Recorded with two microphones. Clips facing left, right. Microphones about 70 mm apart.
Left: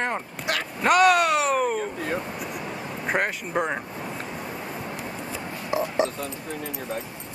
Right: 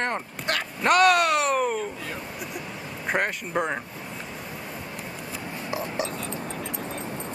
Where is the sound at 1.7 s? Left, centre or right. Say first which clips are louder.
Left 4 dB; left.